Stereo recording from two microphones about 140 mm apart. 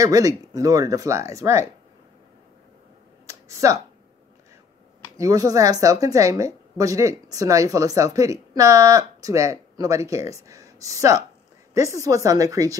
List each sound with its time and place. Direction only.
0.0 s a woman's voice: 25° right (ahead or behind)
3.3 s a sound: 20° right (ahead or behind)
5.1 s a woman's voice: 25° right (ahead or behind)